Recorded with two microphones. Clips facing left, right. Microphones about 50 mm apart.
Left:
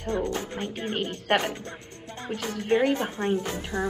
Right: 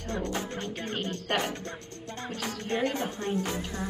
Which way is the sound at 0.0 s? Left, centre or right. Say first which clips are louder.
Left 4 dB; left.